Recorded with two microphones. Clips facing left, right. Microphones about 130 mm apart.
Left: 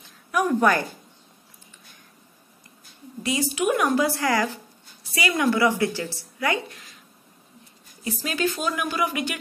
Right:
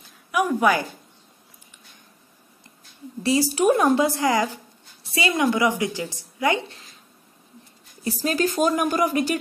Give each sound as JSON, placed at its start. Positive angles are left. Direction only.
{"t": 0.3, "sound": "a woman's voice", "side_deg": -10}
{"t": 3.2, "sound": "a woman's voice", "side_deg": -35}
{"t": 5.0, "sound": "a sound", "side_deg": -25}
{"t": 5.4, "sound": "a woman's voice", "side_deg": -15}
{"t": 8.0, "sound": "speech", "side_deg": -35}